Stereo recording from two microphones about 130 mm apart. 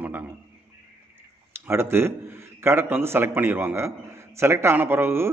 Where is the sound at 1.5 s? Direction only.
20° right (ahead or behind).